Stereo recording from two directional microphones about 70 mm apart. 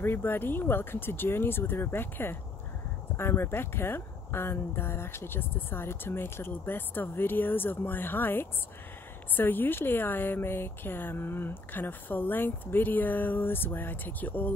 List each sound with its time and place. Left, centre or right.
0.0 s a woman's voice: left